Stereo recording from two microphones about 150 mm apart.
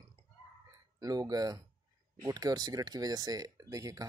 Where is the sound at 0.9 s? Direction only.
25° right (ahead or behind).